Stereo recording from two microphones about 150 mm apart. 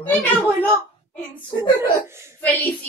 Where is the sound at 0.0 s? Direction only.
10° left (ahead or behind).